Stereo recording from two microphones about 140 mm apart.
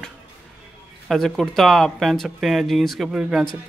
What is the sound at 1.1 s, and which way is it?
Speech, centre (ahead or behind).